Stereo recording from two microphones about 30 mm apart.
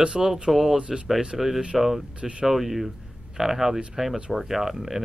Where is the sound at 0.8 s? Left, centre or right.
Right.